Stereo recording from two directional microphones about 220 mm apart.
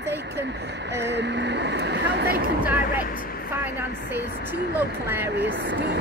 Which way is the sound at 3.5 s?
10° right (ahead or behind).